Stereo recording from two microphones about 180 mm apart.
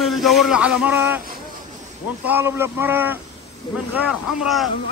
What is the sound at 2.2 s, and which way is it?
A man's voice, 10° right (ahead or behind).